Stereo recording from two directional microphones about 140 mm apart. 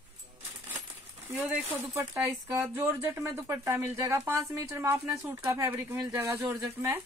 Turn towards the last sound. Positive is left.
turn(degrees=-20)  # may be behind; listen again after turning